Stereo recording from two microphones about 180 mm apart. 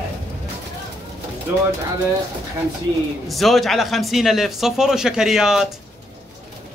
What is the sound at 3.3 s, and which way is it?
A man's voice, centre (ahead or behind).